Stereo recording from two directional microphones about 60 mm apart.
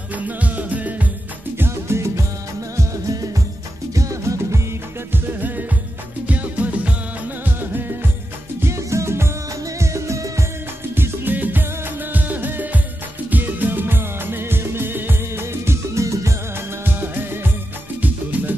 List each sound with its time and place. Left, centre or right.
0.1 s music: right
1.6 s music: right
2.7 s music: right
5.1 s music: right
8.5 s music: right
11.0 s music: right
16.8 s music: right